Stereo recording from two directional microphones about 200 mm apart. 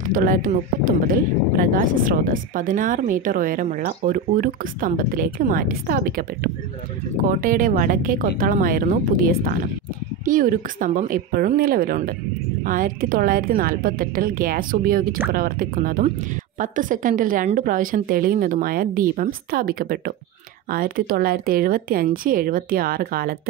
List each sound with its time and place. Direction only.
0.0 s speech: 45° right (ahead or behind)